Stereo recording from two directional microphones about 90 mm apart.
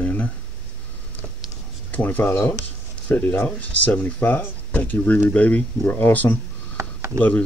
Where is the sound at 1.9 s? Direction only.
20° left (ahead or behind).